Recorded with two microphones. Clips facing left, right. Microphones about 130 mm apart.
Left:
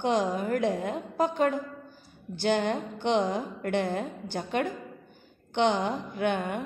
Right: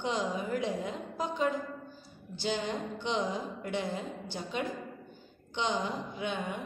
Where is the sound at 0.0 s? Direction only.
55° left (ahead or behind).